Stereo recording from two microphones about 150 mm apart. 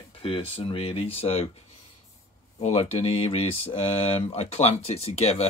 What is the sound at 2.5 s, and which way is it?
Speech, 45° left (ahead or behind).